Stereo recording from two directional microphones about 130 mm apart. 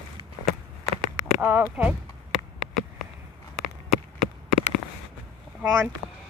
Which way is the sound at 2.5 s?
Centre (ahead or behind).